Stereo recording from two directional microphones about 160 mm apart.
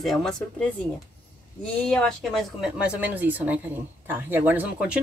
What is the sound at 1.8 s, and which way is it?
A woman's voice, 5° left (ahead or behind).